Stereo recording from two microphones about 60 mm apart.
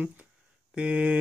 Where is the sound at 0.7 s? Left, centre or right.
Centre.